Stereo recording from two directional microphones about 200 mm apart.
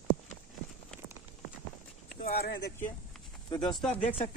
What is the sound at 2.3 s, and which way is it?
Speech, 50° left (ahead or behind).